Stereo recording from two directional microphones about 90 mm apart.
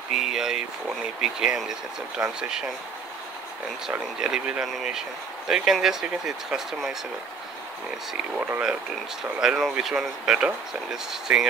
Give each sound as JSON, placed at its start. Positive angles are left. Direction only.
{"t": 0.1, "sound": "speech", "side_deg": -5}
{"t": 4.2, "sound": "speech", "side_deg": -10}
{"t": 8.4, "sound": "speech", "side_deg": -20}
{"t": 9.4, "sound": "speech", "side_deg": -5}